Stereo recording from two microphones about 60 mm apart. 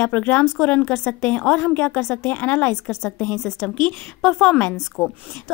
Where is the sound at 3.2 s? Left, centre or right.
Left.